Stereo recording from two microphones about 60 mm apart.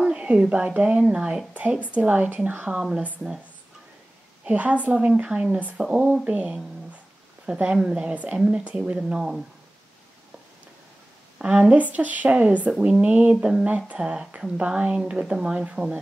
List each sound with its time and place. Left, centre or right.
0.0 s speech: centre
1.5 s a sound: right
1.9 s a woman's voice: right
2.6 s speech: centre
4.5 s a woman's voice: right
11.3 s a woman's voice: centre
11.8 s a woman's voice: right